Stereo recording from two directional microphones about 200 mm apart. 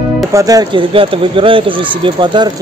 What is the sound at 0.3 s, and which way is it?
Speech, 15° right (ahead or behind).